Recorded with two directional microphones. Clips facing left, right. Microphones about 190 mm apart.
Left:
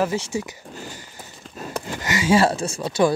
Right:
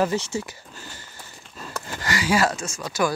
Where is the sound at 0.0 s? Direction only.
10° left (ahead or behind).